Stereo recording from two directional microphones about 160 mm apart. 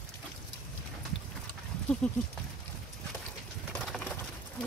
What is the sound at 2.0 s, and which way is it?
Speech, 5° left (ahead or behind).